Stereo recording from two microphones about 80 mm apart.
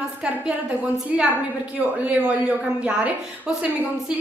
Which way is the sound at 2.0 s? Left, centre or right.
Centre.